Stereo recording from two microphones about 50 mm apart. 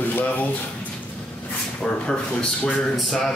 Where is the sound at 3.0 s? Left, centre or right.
Centre.